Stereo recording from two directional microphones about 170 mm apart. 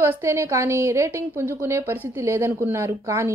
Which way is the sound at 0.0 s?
15° right (ahead or behind).